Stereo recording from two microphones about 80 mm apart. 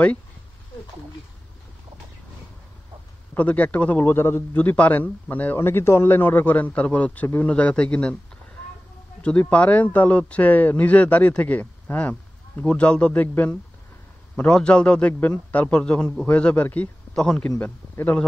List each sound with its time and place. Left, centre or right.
3.3 s a man's voice: centre
9.2 s a man's voice: centre
17.6 s a man's voice: left